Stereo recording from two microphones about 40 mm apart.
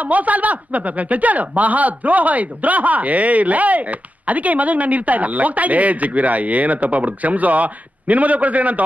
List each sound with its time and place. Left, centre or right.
0.0 s speech: right